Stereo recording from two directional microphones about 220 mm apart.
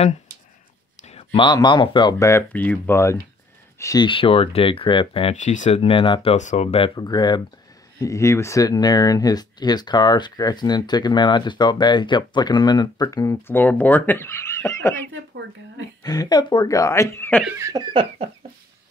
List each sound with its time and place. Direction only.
1.0 s speech: 25° left (ahead or behind)
16.0 s speech: 15° left (ahead or behind)
17.6 s speech: 15° right (ahead or behind)